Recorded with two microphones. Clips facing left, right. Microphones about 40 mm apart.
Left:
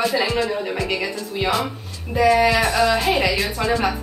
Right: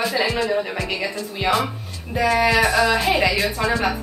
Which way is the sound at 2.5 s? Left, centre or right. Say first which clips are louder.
Right 1 dB; centre.